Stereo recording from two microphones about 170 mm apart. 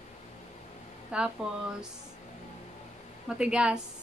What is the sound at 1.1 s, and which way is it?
Speech, 5° right (ahead or behind).